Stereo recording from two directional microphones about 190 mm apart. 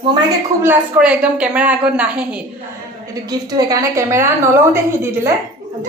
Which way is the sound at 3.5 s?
20° right (ahead or behind).